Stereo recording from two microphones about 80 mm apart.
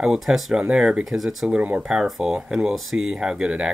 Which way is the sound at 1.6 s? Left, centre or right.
Centre.